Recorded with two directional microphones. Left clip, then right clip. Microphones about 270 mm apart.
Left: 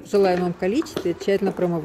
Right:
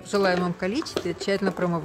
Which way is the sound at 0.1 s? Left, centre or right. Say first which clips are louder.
Left 4 dB; centre.